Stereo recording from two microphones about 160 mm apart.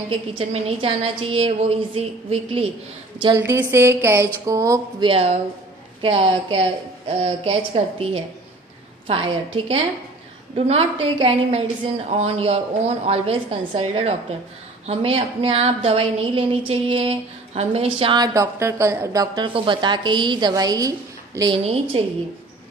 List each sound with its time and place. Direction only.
0.1 s a woman's voice: 35° right (ahead or behind)
3.3 s speech: 15° right (ahead or behind)
5.0 s a woman's voice: 40° right (ahead or behind); by 21.5 s 15° right (ahead or behind)
21.9 s a woman's voice: 35° right (ahead or behind)